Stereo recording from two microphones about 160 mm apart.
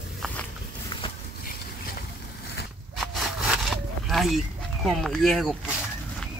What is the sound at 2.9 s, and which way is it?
Sawing, centre (ahead or behind).